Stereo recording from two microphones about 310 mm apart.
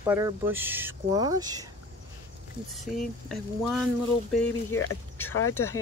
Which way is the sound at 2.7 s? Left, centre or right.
Centre.